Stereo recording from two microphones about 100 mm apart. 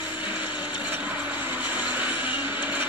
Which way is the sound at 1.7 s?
15° right (ahead or behind).